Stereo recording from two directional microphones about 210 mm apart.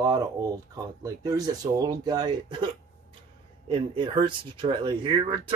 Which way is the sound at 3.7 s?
25° right (ahead or behind).